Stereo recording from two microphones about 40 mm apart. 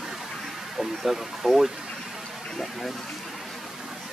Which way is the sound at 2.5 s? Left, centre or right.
Centre.